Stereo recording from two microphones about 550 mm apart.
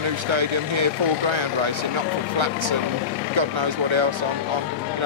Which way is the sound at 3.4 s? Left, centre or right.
Right.